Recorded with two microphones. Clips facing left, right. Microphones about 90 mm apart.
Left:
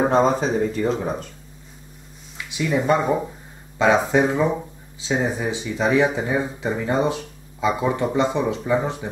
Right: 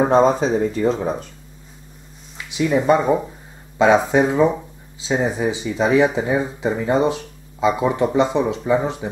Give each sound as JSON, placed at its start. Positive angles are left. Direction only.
{"t": 0.0, "sound": "speech", "side_deg": -5}
{"t": 2.5, "sound": "speech", "side_deg": -5}